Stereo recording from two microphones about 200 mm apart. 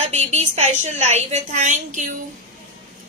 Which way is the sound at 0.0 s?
35° right (ahead or behind).